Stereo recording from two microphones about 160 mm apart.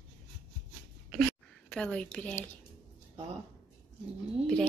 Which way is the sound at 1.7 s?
5° left (ahead or behind).